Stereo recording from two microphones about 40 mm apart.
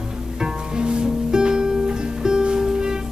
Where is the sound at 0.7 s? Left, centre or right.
Right.